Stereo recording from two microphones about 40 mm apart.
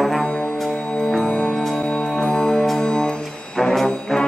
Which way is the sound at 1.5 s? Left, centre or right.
Centre.